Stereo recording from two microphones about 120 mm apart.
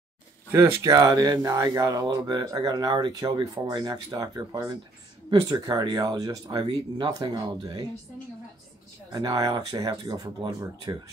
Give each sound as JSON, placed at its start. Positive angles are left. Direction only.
{"t": 0.5, "sound": "speech", "side_deg": -25}
{"t": 9.1, "sound": "speech", "side_deg": -30}